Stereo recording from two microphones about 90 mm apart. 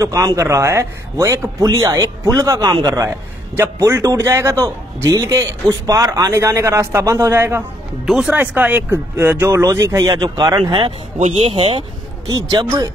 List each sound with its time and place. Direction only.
0.0 s a man's voice: 40° right (ahead or behind)
3.5 s a man's voice: 30° right (ahead or behind)
8.0 s speech: 5° right (ahead or behind)
8.3 s a man's voice: 20° right (ahead or behind); by 10.6 s 45° right (ahead or behind)
11.4 s speech: 80° right
12.3 s speech: 45° right (ahead or behind)